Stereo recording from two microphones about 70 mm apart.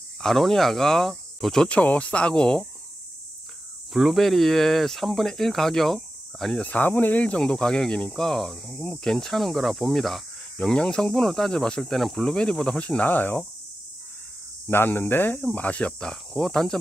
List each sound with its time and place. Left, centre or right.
0.2 s speech: centre
1.7 s speech: centre
3.9 s speech: centre
6.6 s speech: left
14.7 s speech: left; by 16.7 s centre